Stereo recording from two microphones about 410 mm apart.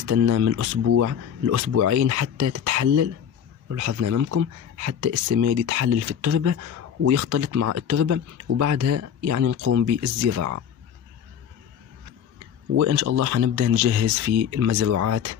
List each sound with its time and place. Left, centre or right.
0.0 s speech: right
12.7 s speech: right